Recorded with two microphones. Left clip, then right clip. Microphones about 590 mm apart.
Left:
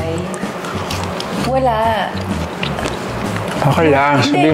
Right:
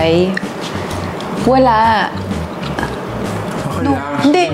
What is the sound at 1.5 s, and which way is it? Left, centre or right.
Speech, right.